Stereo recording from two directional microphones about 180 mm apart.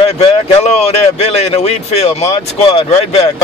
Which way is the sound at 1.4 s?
35° left (ahead or behind).